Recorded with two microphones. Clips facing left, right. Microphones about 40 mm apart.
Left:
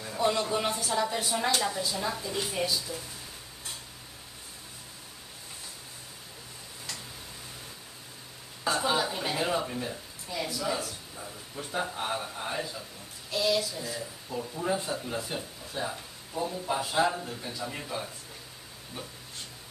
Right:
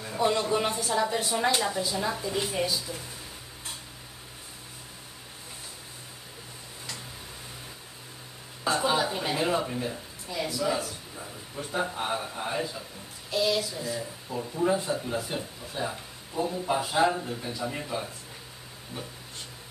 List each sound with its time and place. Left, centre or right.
0.0 s speech: centre
8.6 s a sound: centre
13.3 s speech: centre